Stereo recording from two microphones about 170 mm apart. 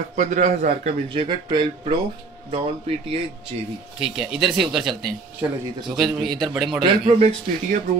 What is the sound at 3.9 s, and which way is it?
Speech, 5° right (ahead or behind).